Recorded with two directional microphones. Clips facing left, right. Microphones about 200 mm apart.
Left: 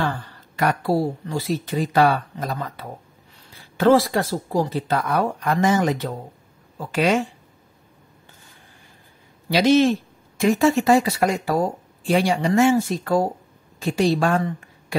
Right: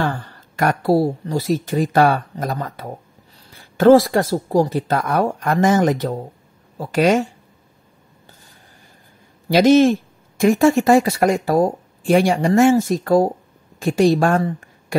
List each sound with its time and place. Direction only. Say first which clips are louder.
0.0 s speech: right 3 dB; 50° right (ahead or behind)
9.5 s a woman's voice: right 4 dB; 45° right (ahead or behind)